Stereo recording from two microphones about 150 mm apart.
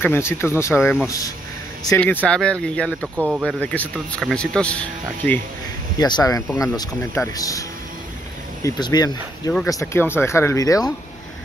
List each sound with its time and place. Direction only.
0.0 s speech: 15° left (ahead or behind)
2.2 s speech: 5° left (ahead or behind)
3.2 s speech: 10° right (ahead or behind)
3.6 s speech: 10° left (ahead or behind)
5.9 s speech: 25° left (ahead or behind)
8.6 s speech: 25° left (ahead or behind)